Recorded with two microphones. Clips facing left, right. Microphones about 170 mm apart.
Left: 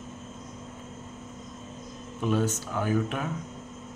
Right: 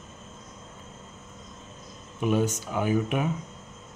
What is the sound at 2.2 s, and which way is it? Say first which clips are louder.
Speech: right 2 dB; 15° right (ahead or behind).